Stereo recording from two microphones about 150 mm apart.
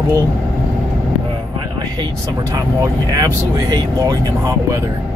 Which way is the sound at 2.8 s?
25° right (ahead or behind).